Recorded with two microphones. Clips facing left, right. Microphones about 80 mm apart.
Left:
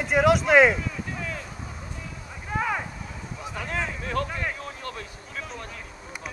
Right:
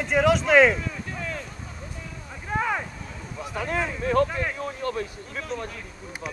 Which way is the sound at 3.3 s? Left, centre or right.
Centre.